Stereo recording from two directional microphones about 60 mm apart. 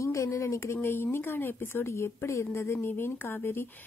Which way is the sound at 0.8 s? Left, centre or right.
Left.